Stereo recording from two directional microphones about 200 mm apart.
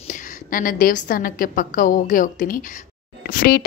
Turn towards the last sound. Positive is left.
turn(degrees=50)  # may be behind; listen again after turning